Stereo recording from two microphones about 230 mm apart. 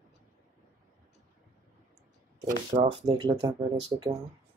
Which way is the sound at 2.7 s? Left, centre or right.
Right.